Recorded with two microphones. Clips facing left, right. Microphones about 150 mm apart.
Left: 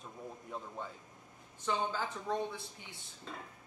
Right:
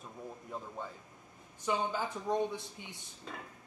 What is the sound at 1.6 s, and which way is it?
A woman's voice, 15° right (ahead or behind).